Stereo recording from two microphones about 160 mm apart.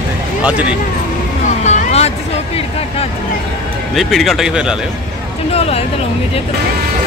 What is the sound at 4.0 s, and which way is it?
Speech, centre (ahead or behind).